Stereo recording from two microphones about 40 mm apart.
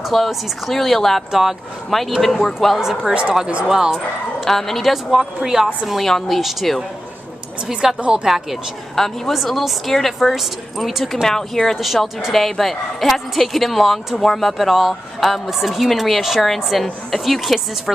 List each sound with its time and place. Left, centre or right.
0.1 s a woman's voice: centre
1.3 s speech: centre
2.2 s a woman's voice: centre
3.1 s speech: right
4.5 s speech: centre
4.9 s speech: centre
5.9 s a woman's voice: centre
8.0 s speech: right
8.9 s a woman's voice: centre
10.3 s a woman's voice: centre
11.2 s speech: centre
12.2 s a woman's voice: centre